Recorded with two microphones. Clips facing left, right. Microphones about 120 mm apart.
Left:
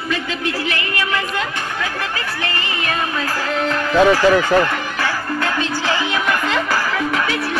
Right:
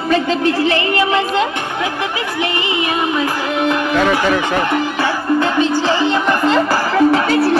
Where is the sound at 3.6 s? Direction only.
15° right (ahead or behind).